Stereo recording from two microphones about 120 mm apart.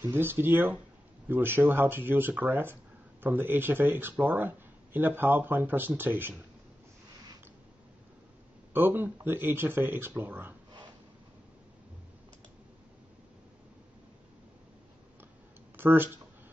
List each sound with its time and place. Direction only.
0.1 s speech: 20° right (ahead or behind)
8.7 s speech: 15° right (ahead or behind)
15.7 s speech: 20° right (ahead or behind)